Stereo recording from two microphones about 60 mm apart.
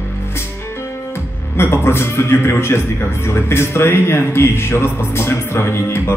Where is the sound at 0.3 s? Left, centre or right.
Left.